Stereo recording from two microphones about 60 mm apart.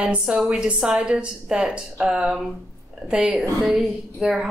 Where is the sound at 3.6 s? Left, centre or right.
Centre.